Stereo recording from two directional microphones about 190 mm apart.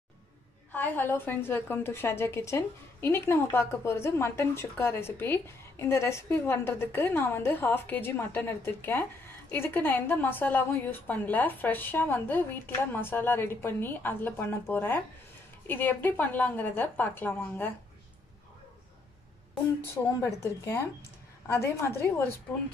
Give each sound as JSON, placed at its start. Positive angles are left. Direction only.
{"t": 0.7, "sound": "a woman's voice", "side_deg": 10}
{"t": 20.2, "sound": "a woman's voice", "side_deg": 15}